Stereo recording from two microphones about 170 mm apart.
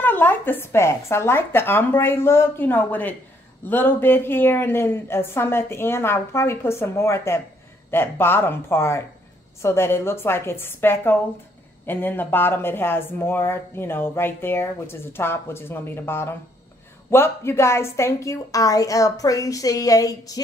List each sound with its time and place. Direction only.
0.0 s a woman's voice: 10° left (ahead or behind)